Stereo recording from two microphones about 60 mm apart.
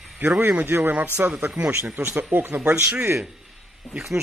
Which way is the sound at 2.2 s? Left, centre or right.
Right.